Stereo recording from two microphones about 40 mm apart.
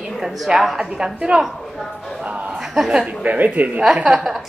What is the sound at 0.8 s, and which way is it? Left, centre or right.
A woman's voice, centre.